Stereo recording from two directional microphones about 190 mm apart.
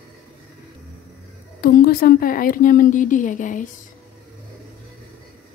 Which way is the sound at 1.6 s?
50° left (ahead or behind).